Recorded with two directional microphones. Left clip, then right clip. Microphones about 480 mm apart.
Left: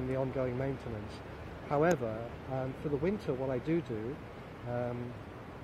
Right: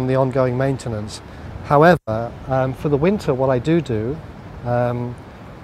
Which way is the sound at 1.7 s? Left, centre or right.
Right.